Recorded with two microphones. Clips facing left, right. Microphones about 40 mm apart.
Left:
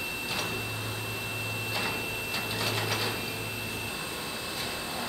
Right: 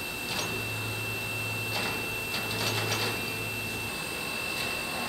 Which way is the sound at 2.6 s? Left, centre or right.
Centre.